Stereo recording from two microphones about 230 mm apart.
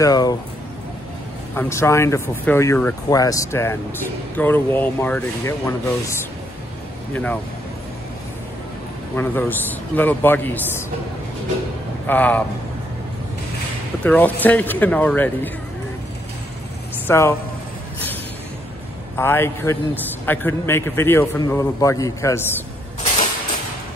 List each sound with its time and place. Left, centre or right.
0.0 s a man's voice: centre
1.5 s a man's voice: centre
9.1 s a man's voice: centre
12.1 s a man's voice: centre
14.0 s a man's voice: centre
17.1 s a man's voice: centre
19.1 s a man's voice: centre